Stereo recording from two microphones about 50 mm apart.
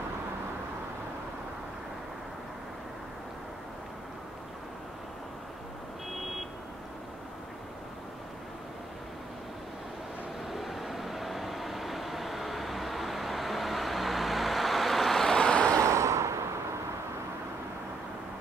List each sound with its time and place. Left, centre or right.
10.5 s vehicle: centre
15.3 s vehicle: left
15.8 s vehicle: right